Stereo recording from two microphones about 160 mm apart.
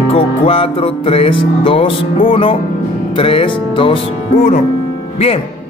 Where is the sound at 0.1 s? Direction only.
35° left (ahead or behind).